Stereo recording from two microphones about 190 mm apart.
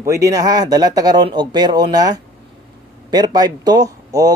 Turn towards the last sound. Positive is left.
turn(degrees=-20)  # may be behind; listen again after turning